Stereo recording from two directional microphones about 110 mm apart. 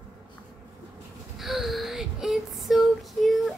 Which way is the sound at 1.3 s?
Centre (ahead or behind).